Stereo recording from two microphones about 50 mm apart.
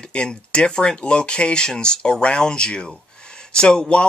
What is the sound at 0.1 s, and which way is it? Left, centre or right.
Speech, left.